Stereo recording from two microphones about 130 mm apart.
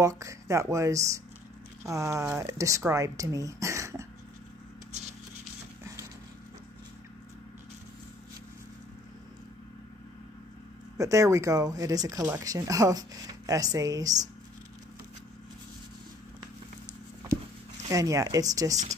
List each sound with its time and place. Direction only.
0.0 s speech: 25° right (ahead or behind)
11.0 s speech: 25° right (ahead or behind)
17.8 s speech: 25° right (ahead or behind)